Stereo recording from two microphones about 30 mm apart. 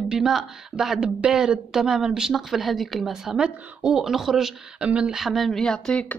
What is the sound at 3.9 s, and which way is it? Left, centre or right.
Speech, centre.